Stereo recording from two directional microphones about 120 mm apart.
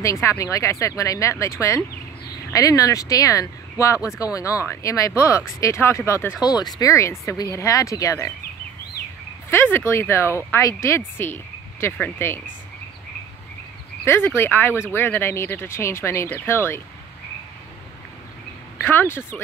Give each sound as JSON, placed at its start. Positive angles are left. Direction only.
{"t": 0.0, "sound": "speech", "side_deg": 25}
{"t": 9.5, "sound": "speech", "side_deg": 20}
{"t": 14.0, "sound": "speech", "side_deg": 20}
{"t": 18.8, "sound": "speech", "side_deg": 20}